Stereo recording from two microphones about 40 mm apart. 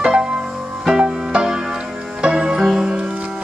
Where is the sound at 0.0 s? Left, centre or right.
Centre.